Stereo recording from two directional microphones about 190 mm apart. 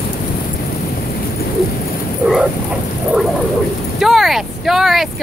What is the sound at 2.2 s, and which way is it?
Bow-wow, centre (ahead or behind).